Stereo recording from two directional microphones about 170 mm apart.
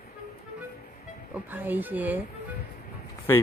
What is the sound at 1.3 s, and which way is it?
Speech, 10° right (ahead or behind).